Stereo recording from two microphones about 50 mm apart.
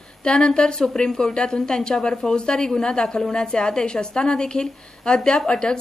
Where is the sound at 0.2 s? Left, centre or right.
Centre.